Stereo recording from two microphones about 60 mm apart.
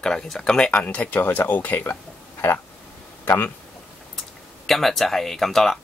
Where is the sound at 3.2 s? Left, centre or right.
Left.